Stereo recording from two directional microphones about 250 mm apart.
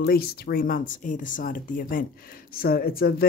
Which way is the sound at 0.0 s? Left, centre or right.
Left.